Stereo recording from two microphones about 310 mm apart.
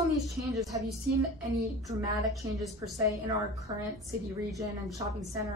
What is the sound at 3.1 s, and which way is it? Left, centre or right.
Speech, centre.